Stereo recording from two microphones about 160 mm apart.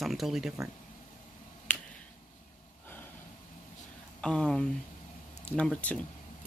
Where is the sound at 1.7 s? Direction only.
10° left (ahead or behind).